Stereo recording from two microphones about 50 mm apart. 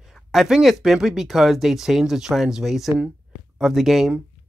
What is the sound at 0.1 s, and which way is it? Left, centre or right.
Speech, centre.